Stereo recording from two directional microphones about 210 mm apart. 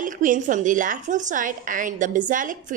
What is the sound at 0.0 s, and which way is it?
A woman's voice, 40° right (ahead or behind).